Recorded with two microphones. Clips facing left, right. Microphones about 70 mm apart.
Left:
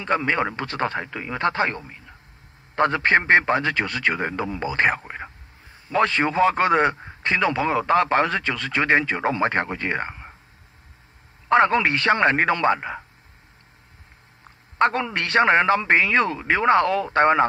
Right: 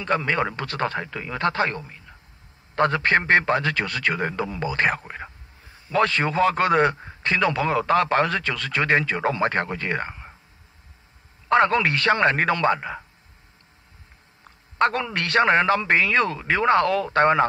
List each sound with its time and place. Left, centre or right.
0.0 s a man's voice: centre
11.4 s a man's voice: centre
14.8 s a man's voice: centre